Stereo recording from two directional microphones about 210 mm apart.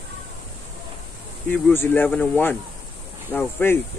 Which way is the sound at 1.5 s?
10° left (ahead or behind).